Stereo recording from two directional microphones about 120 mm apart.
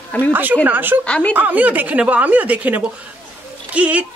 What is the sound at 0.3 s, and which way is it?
Speech, 15° right (ahead or behind).